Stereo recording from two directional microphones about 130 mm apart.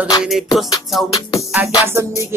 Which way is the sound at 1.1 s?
25° left (ahead or behind).